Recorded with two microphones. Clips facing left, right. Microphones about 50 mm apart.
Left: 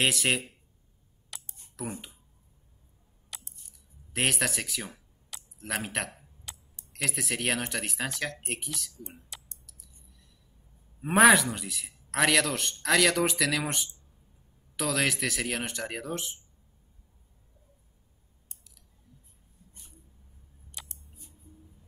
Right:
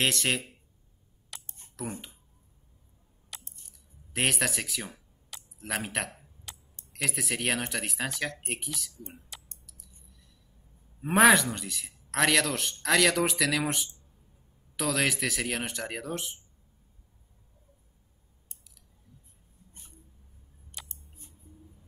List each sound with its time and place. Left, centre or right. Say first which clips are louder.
0.0 s a man's voice: left 1 dB; centre
1.3 s a sound: even; centre
1.8 s a man's voice: even; centre
3.3 s a sound: even; centre
6.9 s a man's voice: even; centre
9.7 s clicking: right 1 dB; centre
11.0 s a man's voice: left 1 dB; centre
20.9 s scissors: even; right